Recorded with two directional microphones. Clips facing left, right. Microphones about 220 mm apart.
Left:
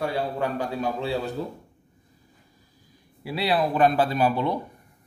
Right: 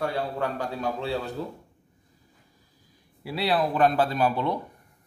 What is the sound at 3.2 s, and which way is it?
Speech, centre (ahead or behind).